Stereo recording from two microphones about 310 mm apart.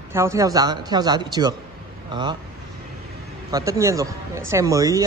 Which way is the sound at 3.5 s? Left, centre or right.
Centre.